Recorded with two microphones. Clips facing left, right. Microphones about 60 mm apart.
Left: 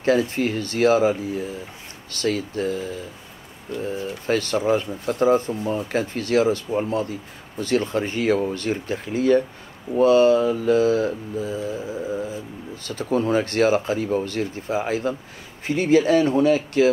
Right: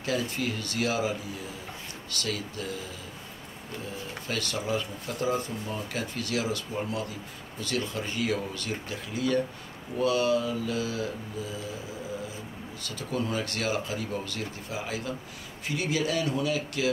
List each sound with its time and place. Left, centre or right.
0.0 s speech: left
3.8 s speech: left
12.8 s speech: left